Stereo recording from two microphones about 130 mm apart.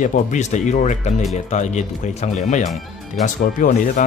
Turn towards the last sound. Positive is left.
turn(degrees=90)